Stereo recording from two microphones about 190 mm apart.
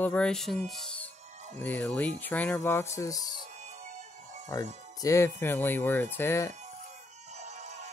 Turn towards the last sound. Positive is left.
turn(degrees=-40)  # may be behind; listen again after turning